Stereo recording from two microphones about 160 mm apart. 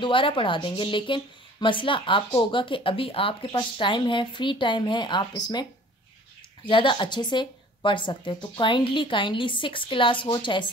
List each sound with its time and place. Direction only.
0.0 s a woman's voice: 30° left (ahead or behind)